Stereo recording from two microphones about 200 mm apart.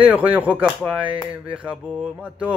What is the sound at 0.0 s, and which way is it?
A man's voice, 10° right (ahead or behind).